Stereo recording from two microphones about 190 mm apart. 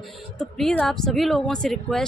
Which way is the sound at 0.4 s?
5° left (ahead or behind).